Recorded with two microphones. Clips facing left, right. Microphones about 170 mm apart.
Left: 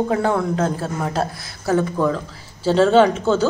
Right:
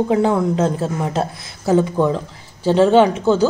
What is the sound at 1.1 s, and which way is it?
Speech, 25° right (ahead or behind).